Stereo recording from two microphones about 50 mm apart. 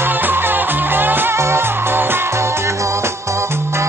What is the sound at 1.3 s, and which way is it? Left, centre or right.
Music, right.